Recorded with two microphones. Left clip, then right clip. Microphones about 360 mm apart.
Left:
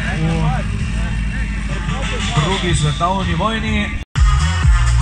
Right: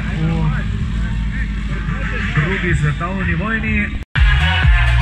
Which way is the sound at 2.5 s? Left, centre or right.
Centre.